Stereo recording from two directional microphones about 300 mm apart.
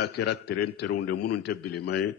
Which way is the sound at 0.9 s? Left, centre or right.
Left.